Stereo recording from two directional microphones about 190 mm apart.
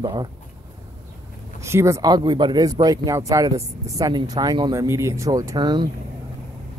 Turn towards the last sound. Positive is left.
turn(degrees=-25)  # may be behind; listen again after turning